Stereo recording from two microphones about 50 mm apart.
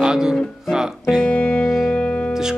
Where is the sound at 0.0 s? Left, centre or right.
Centre.